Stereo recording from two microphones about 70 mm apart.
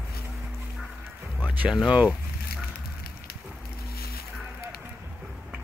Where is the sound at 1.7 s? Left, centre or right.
Centre.